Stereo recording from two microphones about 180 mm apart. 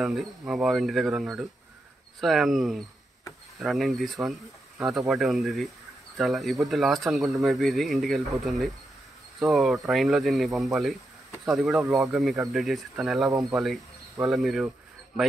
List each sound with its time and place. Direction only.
0.0 s speech: centre (ahead or behind)
13.3 s speech: 15° right (ahead or behind)
14.2 s speech: centre (ahead or behind)